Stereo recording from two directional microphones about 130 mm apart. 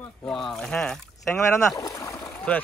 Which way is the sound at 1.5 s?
25° left (ahead or behind).